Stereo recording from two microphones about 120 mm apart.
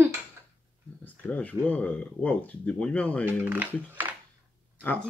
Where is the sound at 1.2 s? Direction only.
10° left (ahead or behind).